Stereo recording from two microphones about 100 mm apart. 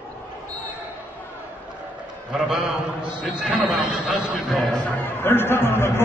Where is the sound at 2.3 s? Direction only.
10° right (ahead or behind).